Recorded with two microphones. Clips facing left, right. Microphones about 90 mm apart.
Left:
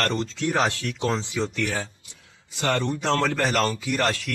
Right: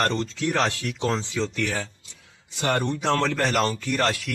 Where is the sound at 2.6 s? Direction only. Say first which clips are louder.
Even; 20° right (ahead or behind).